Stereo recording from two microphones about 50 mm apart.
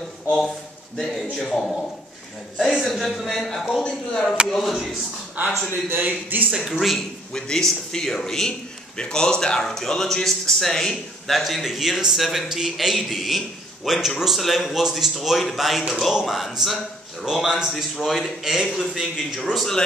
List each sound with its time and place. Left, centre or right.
0.9 s a man's voice: centre
2.6 s a man's voice: centre
5.7 s a man's voice: right
7.3 s a man's voice: centre
17.5 s a man's voice: centre
18.0 s a man's voice: centre
18.4 s a man's voice: centre